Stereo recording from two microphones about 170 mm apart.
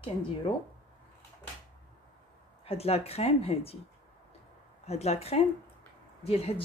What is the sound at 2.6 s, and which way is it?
Speech, 35° left (ahead or behind).